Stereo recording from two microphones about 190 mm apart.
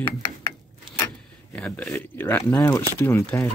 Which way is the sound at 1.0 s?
5° left (ahead or behind).